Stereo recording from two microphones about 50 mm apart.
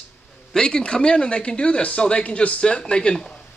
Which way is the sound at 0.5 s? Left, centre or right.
Centre.